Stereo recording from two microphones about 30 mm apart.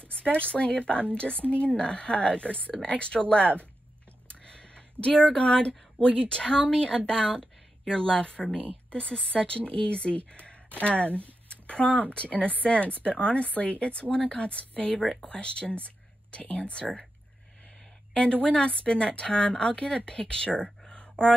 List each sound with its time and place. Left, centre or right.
0.1 s a woman's voice: left
1.4 s speech: left
1.8 s a woman's voice: left
4.3 s a sound: left
6.2 s a woman's voice: left
11.4 s a sound: left
12.1 s a woman's voice: left
18.1 s a woman's voice: left
20.8 s a sound: left